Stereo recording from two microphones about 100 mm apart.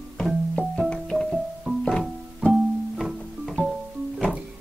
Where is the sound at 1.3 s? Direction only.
5° right (ahead or behind).